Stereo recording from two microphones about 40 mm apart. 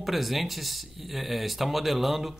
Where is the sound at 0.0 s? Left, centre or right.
Centre.